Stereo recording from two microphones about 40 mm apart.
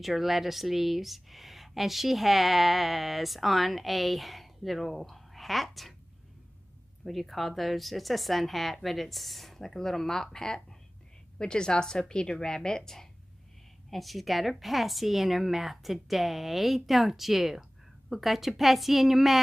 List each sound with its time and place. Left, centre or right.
0.0 s speech: centre
7.1 s a woman's voice: centre